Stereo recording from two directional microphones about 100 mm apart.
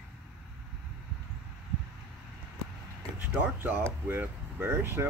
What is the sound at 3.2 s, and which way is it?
Speech, 20° right (ahead or behind).